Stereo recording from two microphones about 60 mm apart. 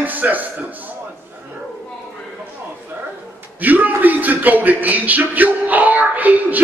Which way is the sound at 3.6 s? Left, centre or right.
Right.